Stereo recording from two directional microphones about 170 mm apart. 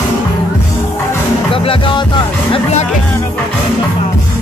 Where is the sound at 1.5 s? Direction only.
30° left (ahead or behind).